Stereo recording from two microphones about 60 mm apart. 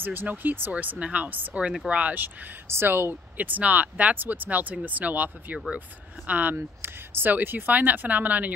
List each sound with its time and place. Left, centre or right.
0.0 s speech: right
2.7 s speech: right
3.3 s speech: right
6.5 s speech: right